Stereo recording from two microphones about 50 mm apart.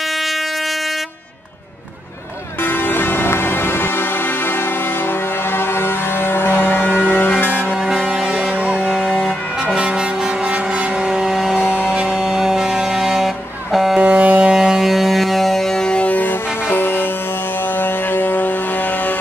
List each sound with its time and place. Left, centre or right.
2.9 s music: left
5.8 s a sound: left
9.0 s vehicle: right
11.1 s a sound: centre
11.6 s music: left
11.9 s music: centre
12.3 s vehicle: centre
13.9 s music: right
14.5 s music: centre
16.1 s music: left